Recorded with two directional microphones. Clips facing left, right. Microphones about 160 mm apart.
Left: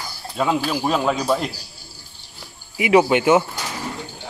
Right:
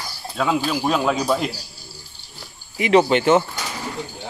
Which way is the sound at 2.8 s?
10° left (ahead or behind).